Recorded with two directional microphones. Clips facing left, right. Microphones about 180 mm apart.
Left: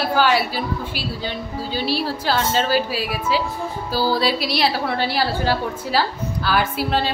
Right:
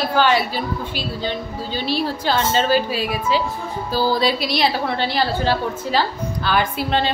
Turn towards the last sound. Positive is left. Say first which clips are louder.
# right 1 dB
turn(degrees=5)  # may be behind; listen again after turning